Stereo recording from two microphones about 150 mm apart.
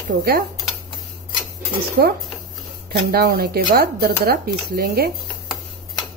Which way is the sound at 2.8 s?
90° right.